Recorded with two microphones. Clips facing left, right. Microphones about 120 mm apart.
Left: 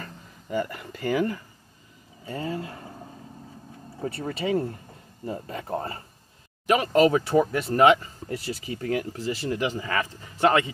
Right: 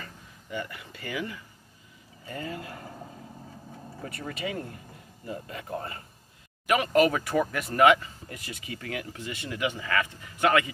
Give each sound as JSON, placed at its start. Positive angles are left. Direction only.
{"t": 0.0, "sound": "speech", "side_deg": 40}
{"t": 2.2, "sound": "speech", "side_deg": 30}
{"t": 4.0, "sound": "speech", "side_deg": 30}